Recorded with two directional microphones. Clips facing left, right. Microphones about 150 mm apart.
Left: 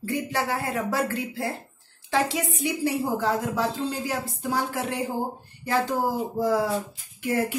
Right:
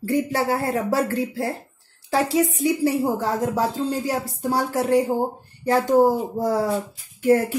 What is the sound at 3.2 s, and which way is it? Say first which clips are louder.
Speech: right 3 dB; 40° right (ahead or behind).